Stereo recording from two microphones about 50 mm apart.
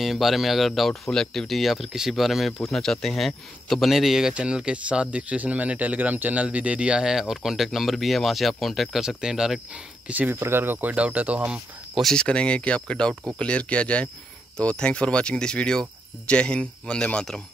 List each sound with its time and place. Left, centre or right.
0.0 s speech: centre
3.9 s speech: centre
4.3 s speech: right; by 9.0 s centre
9.0 s speech: centre
10.0 s speech: right
10.4 s speech: right
11.0 s speech: right
12.2 s speech: left